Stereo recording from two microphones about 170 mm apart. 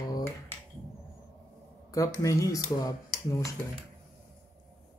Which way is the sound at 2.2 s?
20° left (ahead or behind).